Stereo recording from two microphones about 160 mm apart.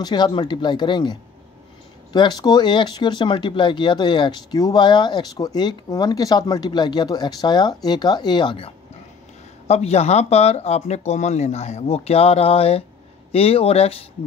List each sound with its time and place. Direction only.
0.0 s speech: 25° left (ahead or behind)
2.1 s speech: 25° left (ahead or behind)